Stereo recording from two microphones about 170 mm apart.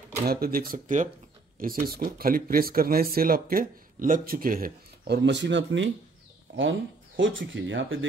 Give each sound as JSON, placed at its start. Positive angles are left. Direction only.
{"t": 0.3, "sound": "speech", "side_deg": -60}